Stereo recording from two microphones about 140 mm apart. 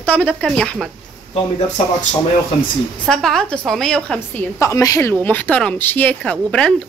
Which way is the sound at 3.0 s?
5° left (ahead or behind).